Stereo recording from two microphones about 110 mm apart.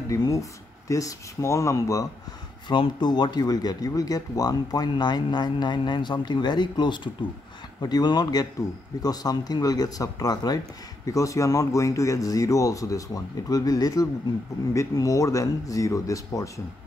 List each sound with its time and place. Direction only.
0.1 s speech: 30° left (ahead or behind)
2.7 s speech: 45° left (ahead or behind)